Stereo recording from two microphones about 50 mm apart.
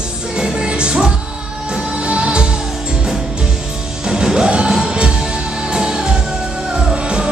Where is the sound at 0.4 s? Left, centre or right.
Centre.